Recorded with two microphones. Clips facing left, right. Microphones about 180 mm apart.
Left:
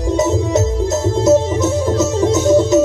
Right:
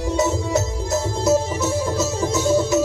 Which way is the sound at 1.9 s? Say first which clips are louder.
Left 7 dB; 20° left (ahead or behind).